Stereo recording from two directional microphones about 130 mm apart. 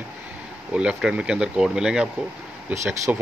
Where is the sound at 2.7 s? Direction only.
20° right (ahead or behind).